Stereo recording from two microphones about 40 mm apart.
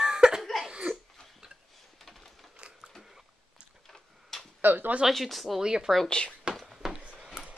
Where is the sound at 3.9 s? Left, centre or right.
Centre.